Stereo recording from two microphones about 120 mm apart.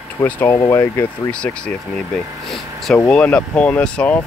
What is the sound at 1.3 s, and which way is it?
Speech, 10° left (ahead or behind).